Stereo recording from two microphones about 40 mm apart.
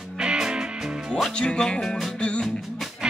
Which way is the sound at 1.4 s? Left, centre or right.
Left.